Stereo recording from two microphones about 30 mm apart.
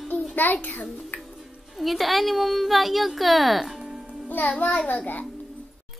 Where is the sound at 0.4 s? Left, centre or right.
Left.